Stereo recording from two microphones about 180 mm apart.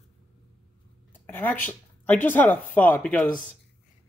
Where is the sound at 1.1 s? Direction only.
10° left (ahead or behind).